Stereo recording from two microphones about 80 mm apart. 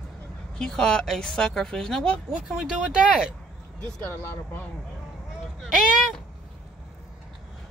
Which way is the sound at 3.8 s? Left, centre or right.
Centre.